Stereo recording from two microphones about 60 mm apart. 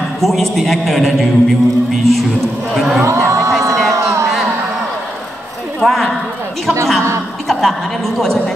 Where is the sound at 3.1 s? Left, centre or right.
Right.